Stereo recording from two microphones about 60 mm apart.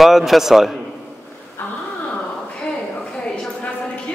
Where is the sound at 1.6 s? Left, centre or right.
Left.